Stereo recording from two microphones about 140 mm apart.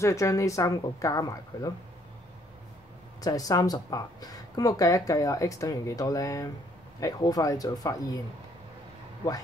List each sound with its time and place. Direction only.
0.0 s speech: 20° left (ahead or behind)
3.2 s speech: 25° left (ahead or behind)